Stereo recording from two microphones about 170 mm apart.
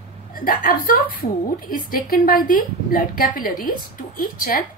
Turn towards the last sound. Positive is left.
turn(degrees=55)  # may be behind; listen again after turning